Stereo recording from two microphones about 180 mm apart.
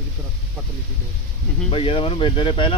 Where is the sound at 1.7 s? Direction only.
30° left (ahead or behind).